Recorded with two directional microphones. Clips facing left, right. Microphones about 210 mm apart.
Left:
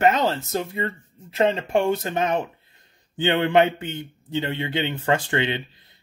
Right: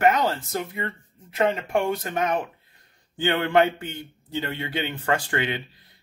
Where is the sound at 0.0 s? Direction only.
25° left (ahead or behind).